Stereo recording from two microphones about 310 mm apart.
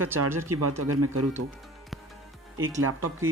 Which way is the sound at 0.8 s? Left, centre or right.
Right.